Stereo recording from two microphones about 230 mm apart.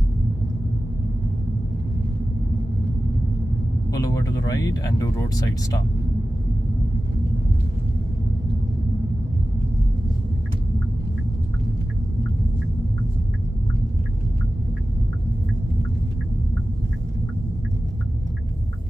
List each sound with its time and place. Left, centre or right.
3.9 s speech: centre